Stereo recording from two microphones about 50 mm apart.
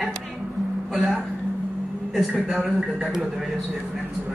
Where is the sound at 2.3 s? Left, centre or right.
Right.